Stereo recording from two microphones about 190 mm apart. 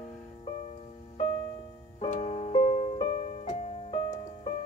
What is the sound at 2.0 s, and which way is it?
Music, 30° left (ahead or behind).